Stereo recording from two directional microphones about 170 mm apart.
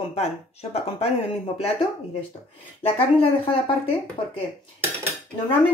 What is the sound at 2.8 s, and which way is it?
Speech, 35° left (ahead or behind).